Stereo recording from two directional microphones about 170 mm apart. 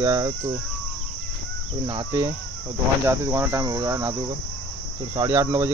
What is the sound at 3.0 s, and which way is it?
Speech, 15° right (ahead or behind).